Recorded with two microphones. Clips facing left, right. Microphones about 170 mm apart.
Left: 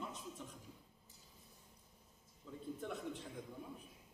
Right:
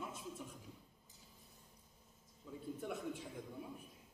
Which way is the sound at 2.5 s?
10° right (ahead or behind).